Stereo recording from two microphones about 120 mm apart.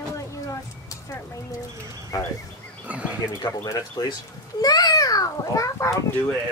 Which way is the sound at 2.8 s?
10° right (ahead or behind).